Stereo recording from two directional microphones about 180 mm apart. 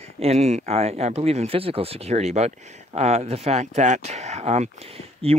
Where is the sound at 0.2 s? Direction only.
35° right (ahead or behind).